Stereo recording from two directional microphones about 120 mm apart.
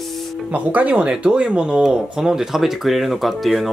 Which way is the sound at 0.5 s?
10° right (ahead or behind).